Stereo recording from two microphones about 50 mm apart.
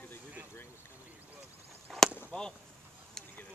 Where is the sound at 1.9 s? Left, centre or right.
Centre.